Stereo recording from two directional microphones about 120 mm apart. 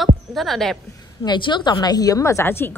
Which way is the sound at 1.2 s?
40° left (ahead or behind).